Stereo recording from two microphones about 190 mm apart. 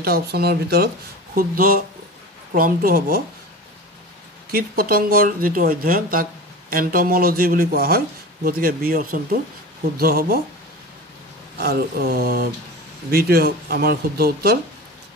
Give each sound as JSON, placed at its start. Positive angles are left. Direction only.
{"t": 0.0, "sound": "speech", "side_deg": -55}
{"t": 4.5, "sound": "speech", "side_deg": -50}
{"t": 11.5, "sound": "speech", "side_deg": -55}